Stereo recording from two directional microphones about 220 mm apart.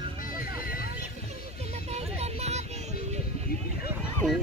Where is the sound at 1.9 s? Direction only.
30° right (ahead or behind).